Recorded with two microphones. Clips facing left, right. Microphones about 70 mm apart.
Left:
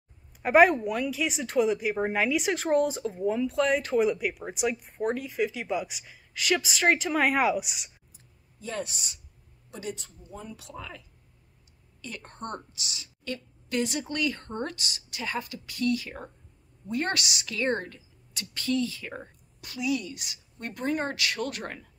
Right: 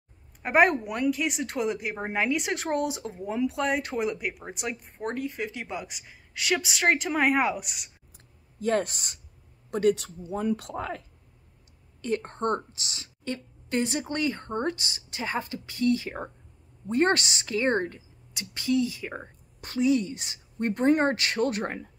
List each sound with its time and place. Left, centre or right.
0.4 s speech: centre
8.5 s speech: right
9.9 s speech: right
12.2 s a woman's voice: right
19.6 s speech: right